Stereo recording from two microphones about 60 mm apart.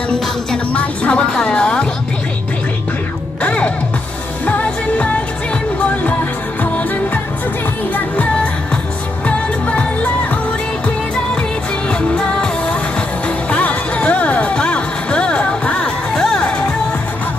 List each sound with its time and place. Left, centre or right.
0.1 s music: centre
3.4 s music: left
9.3 s music: left
11.9 s music: left